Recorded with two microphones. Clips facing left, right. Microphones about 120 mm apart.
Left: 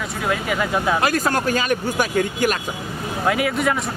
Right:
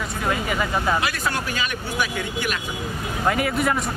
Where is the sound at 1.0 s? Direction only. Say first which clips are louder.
Left 6 dB; 45° left (ahead or behind).